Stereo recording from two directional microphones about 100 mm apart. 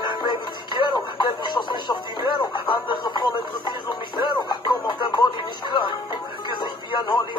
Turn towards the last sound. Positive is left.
turn(degrees=45)  # may be behind; listen again after turning